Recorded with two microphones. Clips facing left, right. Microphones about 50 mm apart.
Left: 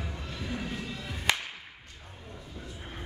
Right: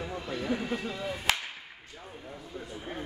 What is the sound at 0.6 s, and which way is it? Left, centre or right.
Speech, right.